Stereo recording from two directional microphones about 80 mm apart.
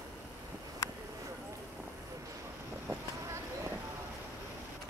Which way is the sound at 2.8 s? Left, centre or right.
Right.